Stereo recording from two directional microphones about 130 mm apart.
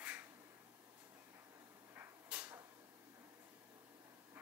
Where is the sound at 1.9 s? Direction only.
15° right (ahead or behind).